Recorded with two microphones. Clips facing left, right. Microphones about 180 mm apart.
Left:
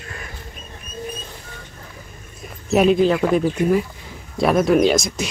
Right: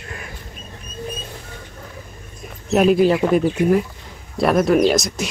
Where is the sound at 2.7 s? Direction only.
5° right (ahead or behind).